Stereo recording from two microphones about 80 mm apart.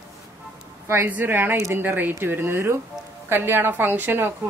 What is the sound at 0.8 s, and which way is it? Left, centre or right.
A woman's voice, right.